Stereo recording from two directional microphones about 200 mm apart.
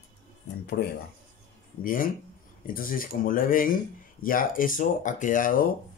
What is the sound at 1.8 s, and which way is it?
Speech, 45° left (ahead or behind).